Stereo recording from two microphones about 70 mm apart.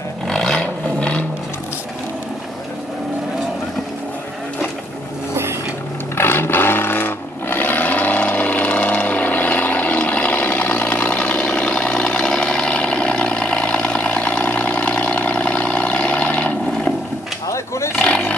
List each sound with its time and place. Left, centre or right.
0.3 s vehicle: centre
6.1 s roar: left; by 16.9 s centre
17.5 s a sound: left
17.9 s roar: centre